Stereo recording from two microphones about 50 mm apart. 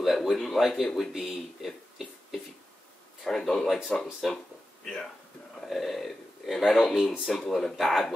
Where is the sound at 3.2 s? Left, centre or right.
Centre.